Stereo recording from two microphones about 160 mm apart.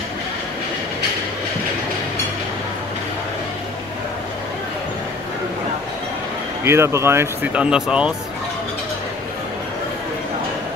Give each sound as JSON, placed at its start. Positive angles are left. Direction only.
{"t": 6.6, "sound": "speech", "side_deg": -15}